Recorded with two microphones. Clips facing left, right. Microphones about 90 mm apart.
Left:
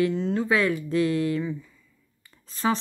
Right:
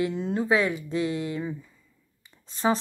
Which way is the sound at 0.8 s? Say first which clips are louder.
Left 4 dB; 30° right (ahead or behind).